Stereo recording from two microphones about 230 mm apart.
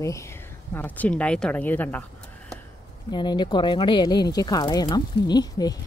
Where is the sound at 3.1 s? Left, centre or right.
Centre.